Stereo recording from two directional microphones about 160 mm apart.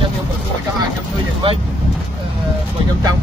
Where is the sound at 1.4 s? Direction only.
35° right (ahead or behind).